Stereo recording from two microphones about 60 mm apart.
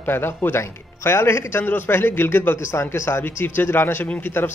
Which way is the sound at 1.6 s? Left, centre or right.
Left.